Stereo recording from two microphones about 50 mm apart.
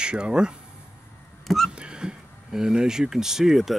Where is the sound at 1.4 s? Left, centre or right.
Centre.